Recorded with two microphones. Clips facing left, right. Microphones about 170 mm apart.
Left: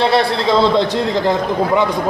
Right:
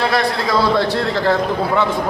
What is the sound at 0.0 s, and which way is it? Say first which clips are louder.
A man's voice: left 3 dB; 25° left (ahead or behind).